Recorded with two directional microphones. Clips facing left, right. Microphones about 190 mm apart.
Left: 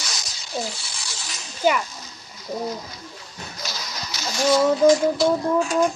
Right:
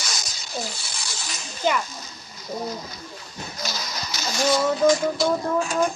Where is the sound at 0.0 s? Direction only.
50° right (ahead or behind).